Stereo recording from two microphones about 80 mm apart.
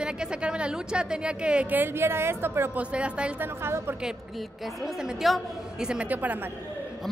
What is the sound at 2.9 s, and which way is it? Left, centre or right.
Speech, centre.